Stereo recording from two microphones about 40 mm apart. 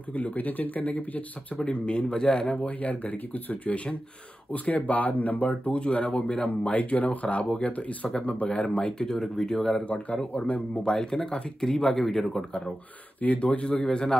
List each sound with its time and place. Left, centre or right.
0.1 s speech: left
1.6 s a man's voice: left
5.8 s a man's voice: left
9.8 s a man's voice: left
10.8 s speech: centre
13.2 s speech: left